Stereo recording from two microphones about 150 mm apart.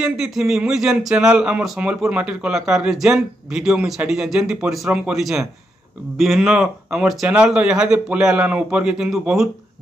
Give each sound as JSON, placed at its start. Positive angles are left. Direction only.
{"t": 0.0, "sound": "speech", "side_deg": -5}